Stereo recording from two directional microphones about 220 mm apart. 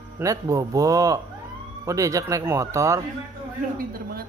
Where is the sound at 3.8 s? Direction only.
40° right (ahead or behind).